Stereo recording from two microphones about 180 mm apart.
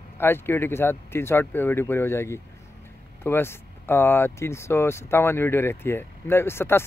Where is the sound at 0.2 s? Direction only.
10° left (ahead or behind).